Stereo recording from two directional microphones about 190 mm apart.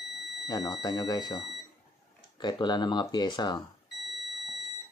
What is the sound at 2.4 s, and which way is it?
Speech, 25° left (ahead or behind).